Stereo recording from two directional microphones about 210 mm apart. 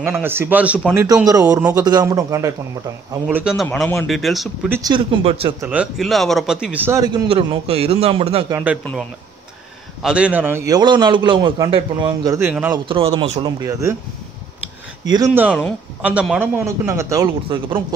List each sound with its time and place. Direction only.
0.0 s a man's voice: 10° right (ahead or behind)
4.7 s a man's voice: 15° right (ahead or behind)
5.6 s a man's voice: 5° right (ahead or behind); by 8.5 s 25° right (ahead or behind)
8.5 s a man's voice: 10° right (ahead or behind)
10.0 s a man's voice: 5° right (ahead or behind)
12.7 s speech: 25° right (ahead or behind)
15.0 s a man's voice: 15° right (ahead or behind)